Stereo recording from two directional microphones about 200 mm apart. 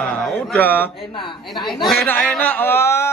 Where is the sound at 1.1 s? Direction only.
25° left (ahead or behind).